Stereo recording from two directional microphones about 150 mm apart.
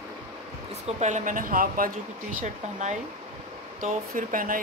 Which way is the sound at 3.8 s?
65° right (ahead or behind).